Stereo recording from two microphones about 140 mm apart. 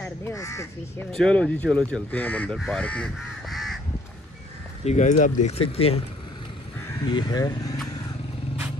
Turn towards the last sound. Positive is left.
turn(degrees=25)  # may be behind; listen again after turning